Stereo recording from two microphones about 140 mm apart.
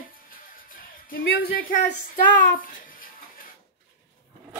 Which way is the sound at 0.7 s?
90° left.